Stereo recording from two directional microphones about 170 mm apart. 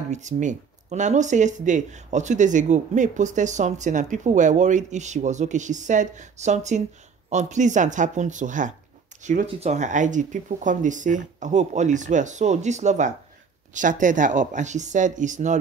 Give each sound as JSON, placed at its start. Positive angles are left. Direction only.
{"t": 0.1, "sound": "speech", "side_deg": -45}